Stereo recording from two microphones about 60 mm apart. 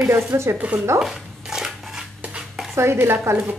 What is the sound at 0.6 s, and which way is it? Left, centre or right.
Speech, right.